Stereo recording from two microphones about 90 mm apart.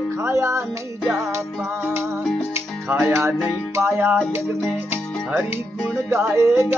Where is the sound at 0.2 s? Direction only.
30° right (ahead or behind).